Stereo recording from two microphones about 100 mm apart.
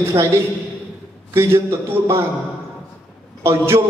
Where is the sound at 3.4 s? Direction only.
25° right (ahead or behind).